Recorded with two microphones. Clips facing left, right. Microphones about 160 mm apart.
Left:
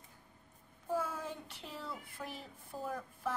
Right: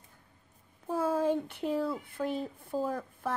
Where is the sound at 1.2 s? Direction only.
55° right (ahead or behind).